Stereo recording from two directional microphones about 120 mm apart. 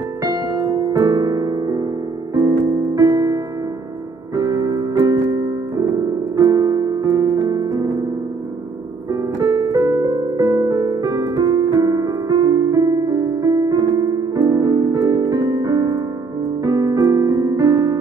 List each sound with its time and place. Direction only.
0.2 s music: 35° right (ahead or behind)
2.3 s piano: 30° right (ahead or behind)
4.4 s music: 30° right (ahead or behind)
6.3 s piano: 30° right (ahead or behind)
9.1 s music: 30° right (ahead or behind)
16.6 s piano: 30° right (ahead or behind)